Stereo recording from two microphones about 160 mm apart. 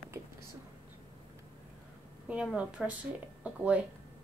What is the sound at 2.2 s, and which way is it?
A woman's voice, 10° right (ahead or behind).